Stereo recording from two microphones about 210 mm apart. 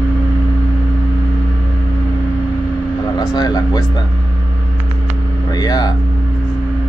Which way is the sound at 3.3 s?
20° left (ahead or behind).